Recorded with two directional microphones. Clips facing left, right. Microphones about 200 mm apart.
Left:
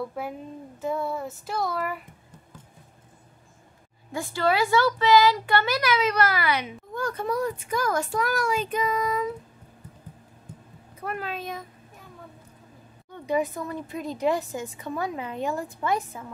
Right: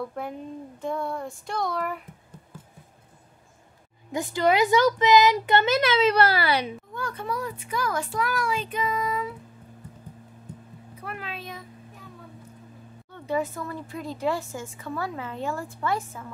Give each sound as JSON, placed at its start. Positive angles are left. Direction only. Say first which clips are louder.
{"t": 0.0, "sound": "child singing", "louder": "even", "side_deg": 5}
{"t": 4.1, "sound": "a child's voice", "louder": "right 2 dB", "side_deg": -20}
{"t": 6.9, "sound": "a child's voice", "louder": "left 4 dB", "side_deg": 40}
{"t": 11.1, "sound": "a child's voice", "louder": "left 5 dB", "side_deg": 45}
{"t": 13.1, "sound": "speech", "louder": "left 2 dB", "side_deg": 15}